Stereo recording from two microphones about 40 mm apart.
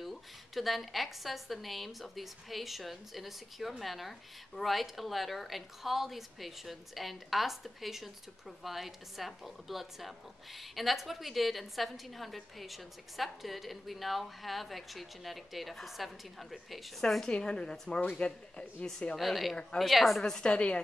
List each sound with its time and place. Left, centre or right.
0.0 s a woman's voice: centre
17.3 s a woman's voice: left
18.0 s a man's voice: left
19.1 s a woman's voice: centre
20.4 s a woman's voice: left